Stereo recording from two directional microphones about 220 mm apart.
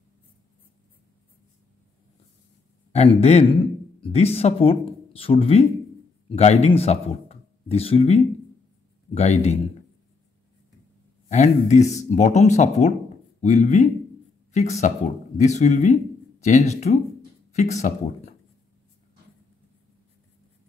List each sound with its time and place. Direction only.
2.9 s a man's voice: 30° left (ahead or behind)
11.2 s a man's voice: 30° left (ahead or behind)